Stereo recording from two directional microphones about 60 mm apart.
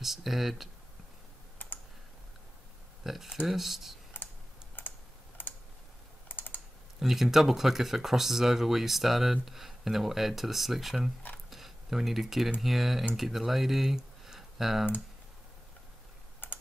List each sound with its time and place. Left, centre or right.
0.0 s speech: centre
3.0 s speech: centre
4.1 s computer keyboard: left
6.2 s typing: left
7.0 s speech: centre
11.5 s a sound: centre
12.6 s speech: centre
16.4 s typing: left